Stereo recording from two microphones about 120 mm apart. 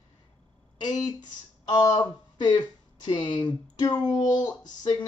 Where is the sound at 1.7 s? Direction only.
35° left (ahead or behind).